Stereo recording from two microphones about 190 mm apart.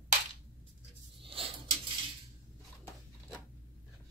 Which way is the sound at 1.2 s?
30° right (ahead or behind).